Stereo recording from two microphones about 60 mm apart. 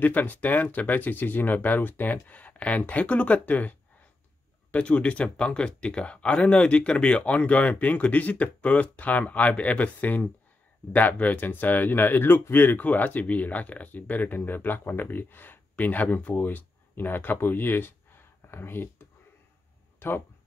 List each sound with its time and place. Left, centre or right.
0.0 s speech: left
20.0 s speech: left